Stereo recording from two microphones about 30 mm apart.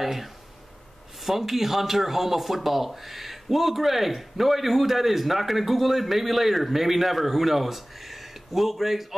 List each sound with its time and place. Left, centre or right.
0.0 s speech: centre